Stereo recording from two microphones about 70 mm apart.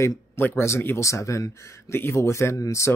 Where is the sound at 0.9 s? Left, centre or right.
Left.